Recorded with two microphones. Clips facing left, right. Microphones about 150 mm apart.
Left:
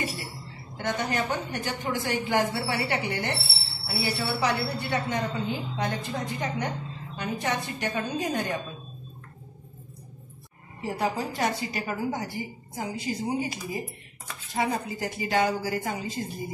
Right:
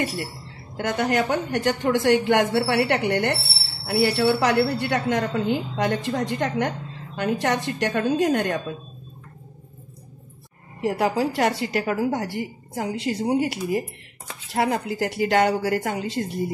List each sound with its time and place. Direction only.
0.7 s speech: 75° right (ahead or behind)
2.0 s a woman's voice: 70° right (ahead or behind)
3.8 s a woman's voice: 80° right
10.8 s a woman's voice: 80° right